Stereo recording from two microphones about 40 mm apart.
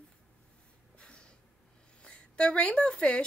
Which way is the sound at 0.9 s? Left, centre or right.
Left.